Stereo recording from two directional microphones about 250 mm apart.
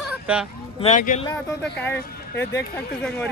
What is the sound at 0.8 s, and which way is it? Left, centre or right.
Speech, left.